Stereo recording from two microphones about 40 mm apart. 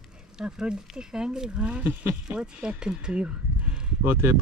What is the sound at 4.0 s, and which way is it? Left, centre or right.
Speech, right.